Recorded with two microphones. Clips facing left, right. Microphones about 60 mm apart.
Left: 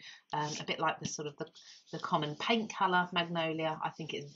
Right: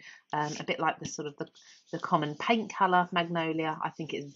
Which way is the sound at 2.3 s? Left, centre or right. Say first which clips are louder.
Right 4 dB; right.